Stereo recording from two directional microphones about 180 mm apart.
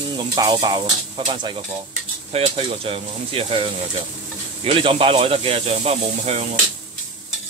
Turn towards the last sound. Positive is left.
turn(degrees=-35)  # may be behind; listen again after turning